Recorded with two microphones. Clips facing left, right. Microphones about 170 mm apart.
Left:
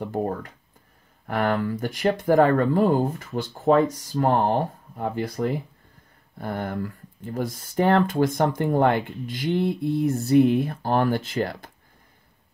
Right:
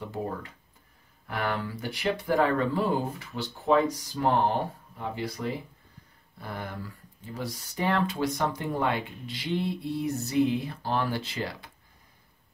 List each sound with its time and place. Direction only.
0.0 s speech: 50° left (ahead or behind)